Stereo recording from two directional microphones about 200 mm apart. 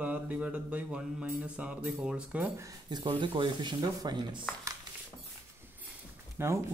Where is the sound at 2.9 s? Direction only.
20° right (ahead or behind).